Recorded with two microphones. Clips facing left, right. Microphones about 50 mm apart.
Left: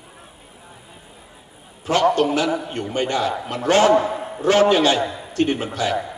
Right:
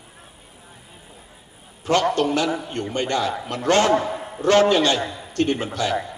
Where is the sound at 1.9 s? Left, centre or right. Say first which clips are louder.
Left 2 dB; centre.